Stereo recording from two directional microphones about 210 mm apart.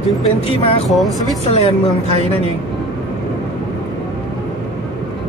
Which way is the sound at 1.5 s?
30° left (ahead or behind).